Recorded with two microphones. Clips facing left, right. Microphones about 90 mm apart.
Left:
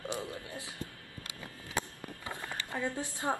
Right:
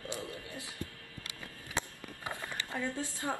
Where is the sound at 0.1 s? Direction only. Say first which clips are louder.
Left 1 dB; 20° left (ahead or behind).